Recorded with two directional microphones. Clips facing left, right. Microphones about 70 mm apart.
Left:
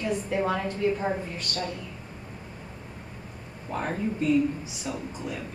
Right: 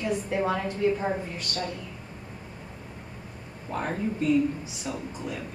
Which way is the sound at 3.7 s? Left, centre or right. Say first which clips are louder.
Even; centre.